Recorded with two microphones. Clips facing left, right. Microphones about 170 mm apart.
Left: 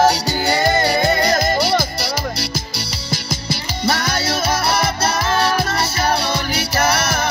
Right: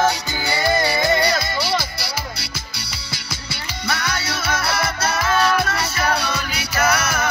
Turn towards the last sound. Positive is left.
turn(degrees=35)  # may be behind; listen again after turning